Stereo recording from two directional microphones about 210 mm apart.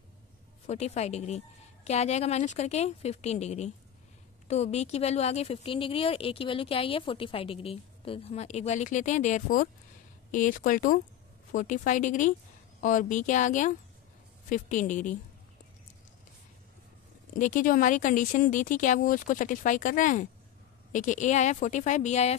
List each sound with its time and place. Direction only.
0.7 s a woman's voice: 30° left (ahead or behind)
17.4 s speech: 40° left (ahead or behind)